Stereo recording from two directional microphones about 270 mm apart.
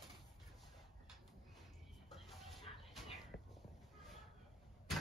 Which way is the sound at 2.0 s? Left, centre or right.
Centre.